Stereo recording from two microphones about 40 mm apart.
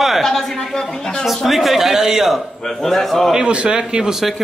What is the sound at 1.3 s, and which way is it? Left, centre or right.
Speech, centre.